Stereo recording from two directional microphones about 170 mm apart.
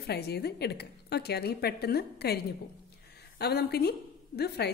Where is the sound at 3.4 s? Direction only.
70° left (ahead or behind).